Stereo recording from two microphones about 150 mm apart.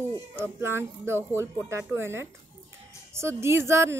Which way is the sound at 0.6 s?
15° right (ahead or behind).